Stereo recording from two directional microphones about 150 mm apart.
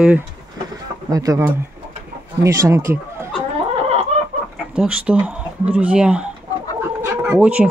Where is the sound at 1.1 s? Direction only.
20° right (ahead or behind).